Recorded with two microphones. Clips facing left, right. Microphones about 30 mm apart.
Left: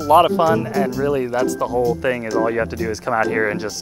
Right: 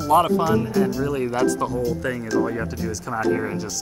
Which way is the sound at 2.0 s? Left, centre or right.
Left.